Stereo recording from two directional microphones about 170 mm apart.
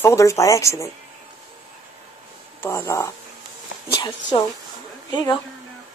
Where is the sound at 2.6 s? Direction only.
15° left (ahead or behind).